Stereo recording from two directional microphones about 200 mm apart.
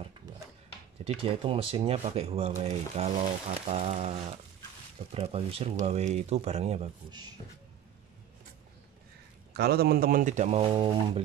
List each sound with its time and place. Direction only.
1.0 s speech: 25° right (ahead or behind)
5.1 s speech: 30° right (ahead or behind)
9.5 s speech: 50° right (ahead or behind); by 11.2 s 25° right (ahead or behind)